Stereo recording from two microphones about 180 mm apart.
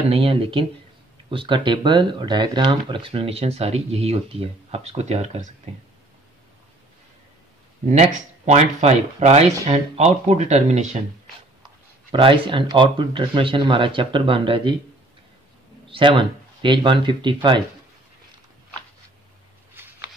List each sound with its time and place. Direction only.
0.1 s speech: 30° right (ahead or behind)
7.9 s speech: 35° right (ahead or behind)
12.1 s speech: 30° right (ahead or behind)
15.9 s speech: 25° right (ahead or behind)
19.7 s a sound: 10° right (ahead or behind)